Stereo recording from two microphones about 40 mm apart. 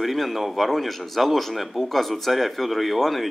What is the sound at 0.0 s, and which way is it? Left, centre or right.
Speech, centre.